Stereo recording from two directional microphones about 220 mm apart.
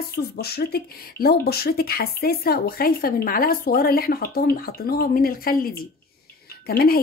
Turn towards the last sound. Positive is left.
turn(degrees=45)  # may be behind; listen again after turning